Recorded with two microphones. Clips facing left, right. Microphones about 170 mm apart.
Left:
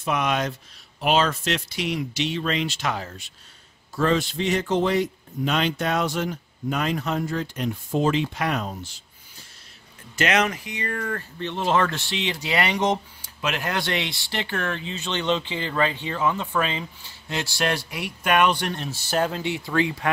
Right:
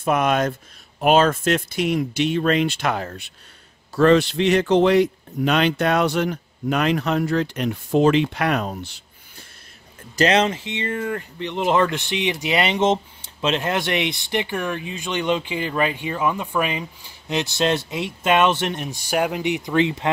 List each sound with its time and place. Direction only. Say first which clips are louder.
0.0 s a man's voice: right 5 dB; 50° right (ahead or behind); by 9.0 s 65° right (ahead or behind)
10.1 s speech: right 4 dB; 30° right (ahead or behind)